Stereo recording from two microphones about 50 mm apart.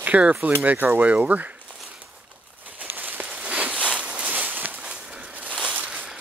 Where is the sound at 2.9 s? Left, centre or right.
Right.